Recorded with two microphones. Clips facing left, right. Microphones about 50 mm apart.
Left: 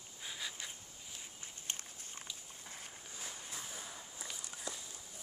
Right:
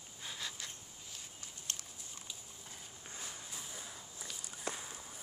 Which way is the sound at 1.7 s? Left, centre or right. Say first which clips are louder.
Left 1 dB; left.